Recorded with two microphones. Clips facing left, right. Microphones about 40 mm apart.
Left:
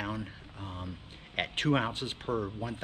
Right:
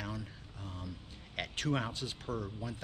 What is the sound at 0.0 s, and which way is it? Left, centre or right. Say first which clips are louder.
Speech: left 6 dB; left.